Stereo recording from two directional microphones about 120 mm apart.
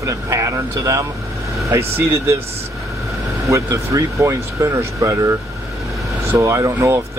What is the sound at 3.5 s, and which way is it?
Speech, 25° right (ahead or behind).